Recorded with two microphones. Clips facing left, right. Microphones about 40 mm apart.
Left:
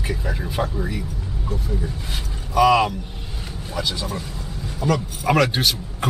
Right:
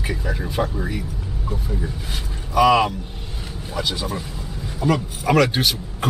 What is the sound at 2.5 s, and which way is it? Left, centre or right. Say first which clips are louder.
A man's voice: even; centre.